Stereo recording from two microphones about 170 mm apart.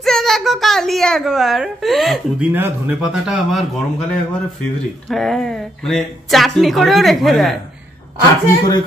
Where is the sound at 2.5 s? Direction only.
10° right (ahead or behind).